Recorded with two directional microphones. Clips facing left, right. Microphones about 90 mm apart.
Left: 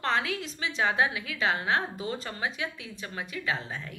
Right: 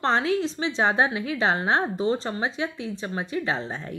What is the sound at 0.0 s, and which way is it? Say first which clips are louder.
A woman's voice: right 6 dB; 30° right (ahead or behind).